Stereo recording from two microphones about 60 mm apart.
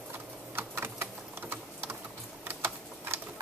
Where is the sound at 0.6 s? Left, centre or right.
Right.